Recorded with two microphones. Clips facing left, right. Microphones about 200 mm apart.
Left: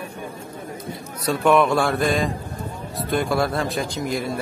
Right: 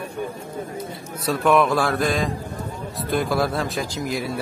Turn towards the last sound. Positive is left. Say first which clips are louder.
# left 1 dB
turn(degrees=0)  # may be behind; listen again after turning